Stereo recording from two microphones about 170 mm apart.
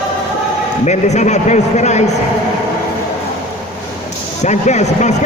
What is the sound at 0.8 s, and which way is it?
A man's voice, 45° left (ahead or behind).